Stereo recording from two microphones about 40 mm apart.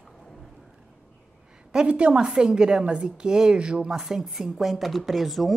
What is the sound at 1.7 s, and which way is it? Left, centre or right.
A woman's voice, right.